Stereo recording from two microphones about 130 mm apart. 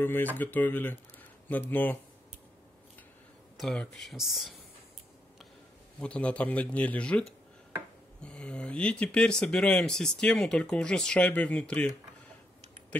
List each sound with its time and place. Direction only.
0.0 s speech: 15° left (ahead or behind)
3.5 s speech: 5° left (ahead or behind)
5.9 s speech: 10° left (ahead or behind)